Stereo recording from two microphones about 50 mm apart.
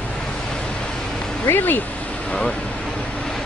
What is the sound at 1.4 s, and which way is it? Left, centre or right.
Speech, left.